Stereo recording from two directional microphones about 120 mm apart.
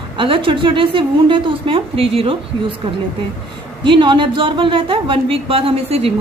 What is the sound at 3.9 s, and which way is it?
A woman's voice, 40° right (ahead or behind).